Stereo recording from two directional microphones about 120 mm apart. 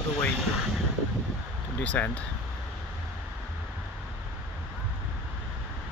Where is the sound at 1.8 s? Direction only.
10° left (ahead or behind).